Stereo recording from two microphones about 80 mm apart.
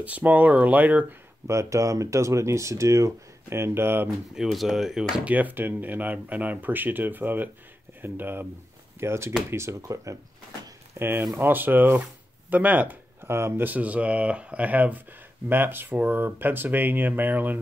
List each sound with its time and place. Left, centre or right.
0.0 s speech: centre
1.5 s speech: right
4.4 s speech: centre
5.3 s speech: right
11.0 s speech: right